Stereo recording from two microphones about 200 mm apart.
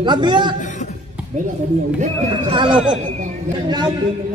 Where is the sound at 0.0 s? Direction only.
20° right (ahead or behind).